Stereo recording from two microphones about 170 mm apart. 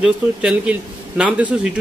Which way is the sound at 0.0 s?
5° right (ahead or behind).